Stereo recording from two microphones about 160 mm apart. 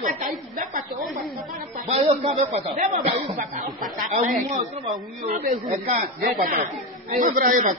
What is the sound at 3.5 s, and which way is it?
Speech, 60° right (ahead or behind).